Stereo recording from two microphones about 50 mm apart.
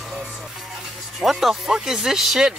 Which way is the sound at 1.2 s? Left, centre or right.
Centre.